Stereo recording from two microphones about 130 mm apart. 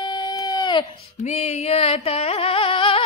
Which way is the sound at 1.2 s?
60° left (ahead or behind).